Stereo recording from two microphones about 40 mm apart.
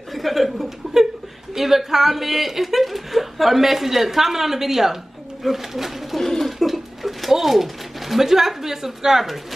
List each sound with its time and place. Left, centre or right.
0.1 s a woman's voice: centre